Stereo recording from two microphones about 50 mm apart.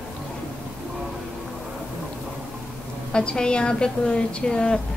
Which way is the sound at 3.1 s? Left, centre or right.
Centre.